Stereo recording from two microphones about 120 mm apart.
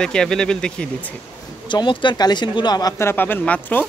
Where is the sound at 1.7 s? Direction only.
40° left (ahead or behind).